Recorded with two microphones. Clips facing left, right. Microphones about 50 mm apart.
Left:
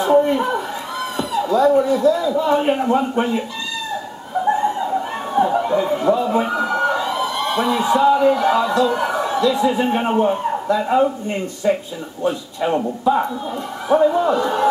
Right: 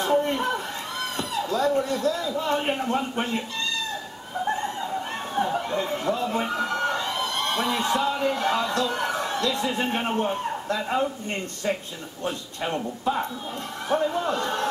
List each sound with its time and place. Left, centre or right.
0.0 s a sound: centre
2.4 s a man's voice: centre
4.5 s speech: centre
13.8 s a man's voice: centre